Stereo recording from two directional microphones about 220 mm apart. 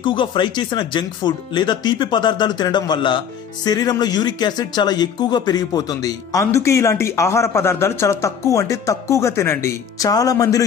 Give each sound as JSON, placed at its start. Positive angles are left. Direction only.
{"t": 0.0, "sound": "speech", "side_deg": 20}